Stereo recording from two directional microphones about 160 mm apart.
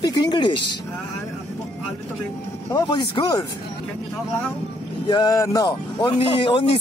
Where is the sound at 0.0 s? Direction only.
30° left (ahead or behind).